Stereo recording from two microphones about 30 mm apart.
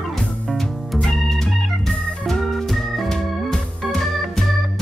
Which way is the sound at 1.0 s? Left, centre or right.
Centre.